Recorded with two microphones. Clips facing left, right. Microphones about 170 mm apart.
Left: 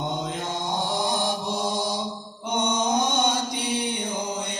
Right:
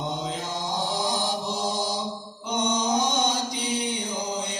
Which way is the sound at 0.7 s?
60° left (ahead or behind).